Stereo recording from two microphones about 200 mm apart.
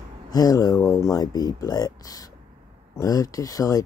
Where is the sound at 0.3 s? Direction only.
20° left (ahead or behind).